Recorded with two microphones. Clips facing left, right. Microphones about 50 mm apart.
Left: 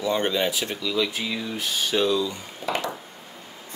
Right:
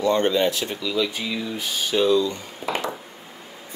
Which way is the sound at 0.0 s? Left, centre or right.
Centre.